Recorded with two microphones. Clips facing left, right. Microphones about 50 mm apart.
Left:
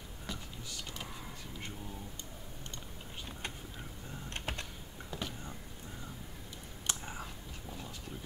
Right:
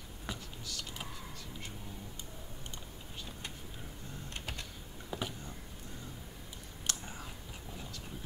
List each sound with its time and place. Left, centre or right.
0.3 s computer keyboard: centre
4.3 s typing: left
5.1 s vehicle: centre
6.9 s a sound: centre